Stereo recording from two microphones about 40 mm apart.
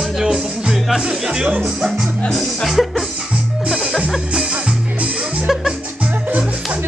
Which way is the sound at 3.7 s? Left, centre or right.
Centre.